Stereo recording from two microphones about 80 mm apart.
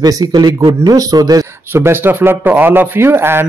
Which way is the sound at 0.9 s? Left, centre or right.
Right.